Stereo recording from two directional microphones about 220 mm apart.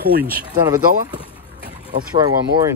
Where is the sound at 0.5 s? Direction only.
15° right (ahead or behind).